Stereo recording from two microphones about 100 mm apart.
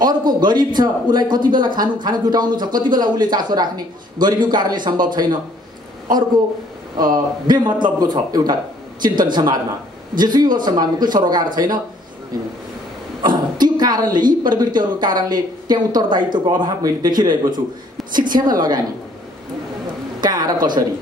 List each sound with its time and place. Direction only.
0.0 s a man's voice: 45° right (ahead or behind)
7.0 s a man's voice: 45° right (ahead or behind)
13.2 s a man's voice: 45° right (ahead or behind)
18.5 s a man's voice: 40° right (ahead or behind)
20.2 s a woman's voice: 40° right (ahead or behind)